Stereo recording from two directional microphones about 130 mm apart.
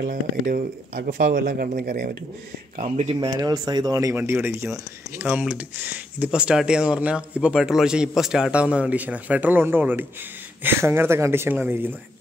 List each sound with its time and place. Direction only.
0.0 s speech: 90° right
2.8 s speech: 55° right (ahead or behind)
3.2 s speech: 30° right (ahead or behind)